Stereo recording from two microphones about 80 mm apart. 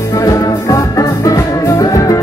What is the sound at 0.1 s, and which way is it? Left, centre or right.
Music, left.